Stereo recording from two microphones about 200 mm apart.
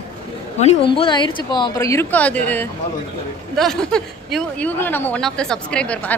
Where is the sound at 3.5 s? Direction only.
Centre (ahead or behind).